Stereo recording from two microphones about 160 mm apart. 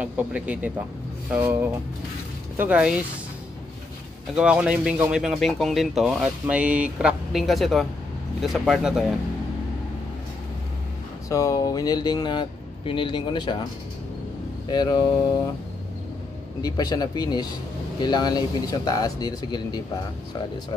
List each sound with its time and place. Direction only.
0.0 s speech: 10° right (ahead or behind)
4.4 s speech: 5° right (ahead or behind)
11.2 s speech: 20° left (ahead or behind)
14.7 s speech: 25° left (ahead or behind)
16.6 s speech: 25° left (ahead or behind)